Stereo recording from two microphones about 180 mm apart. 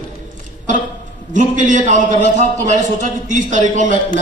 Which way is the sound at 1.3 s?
45° right (ahead or behind).